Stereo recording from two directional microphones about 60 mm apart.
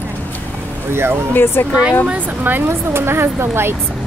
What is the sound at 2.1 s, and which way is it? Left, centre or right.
Speech, right.